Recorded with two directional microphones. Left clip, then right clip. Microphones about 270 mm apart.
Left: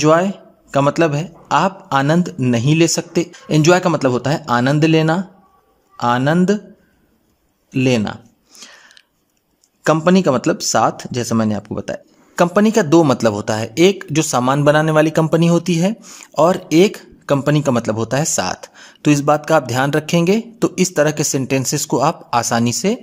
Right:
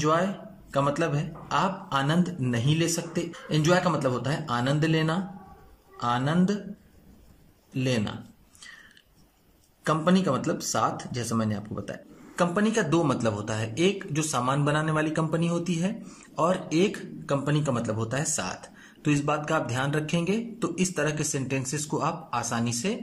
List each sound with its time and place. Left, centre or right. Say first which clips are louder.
0.0 s speech: left 11 dB; left
7.7 s a sound: left 12 dB; left
9.8 s speech: left 11 dB; left